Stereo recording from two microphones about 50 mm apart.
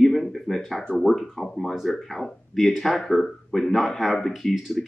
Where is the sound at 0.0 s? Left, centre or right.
Centre.